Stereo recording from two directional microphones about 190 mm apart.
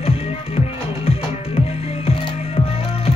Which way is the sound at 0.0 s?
30° left (ahead or behind).